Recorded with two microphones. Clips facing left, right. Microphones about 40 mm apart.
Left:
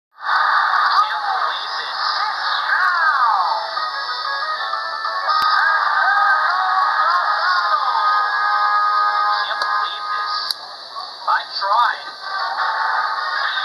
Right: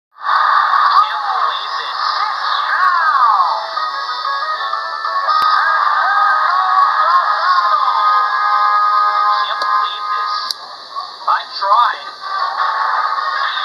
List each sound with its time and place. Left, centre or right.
0.3 s radio: centre
2.0 s a sound: centre
11.6 s music: centre